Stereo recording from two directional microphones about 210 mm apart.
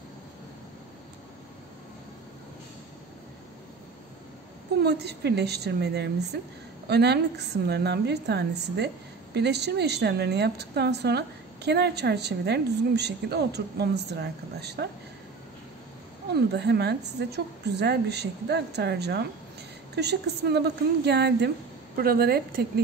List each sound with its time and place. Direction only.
4.8 s a woman's voice: 50° right (ahead or behind)
16.5 s a woman's voice: 50° right (ahead or behind)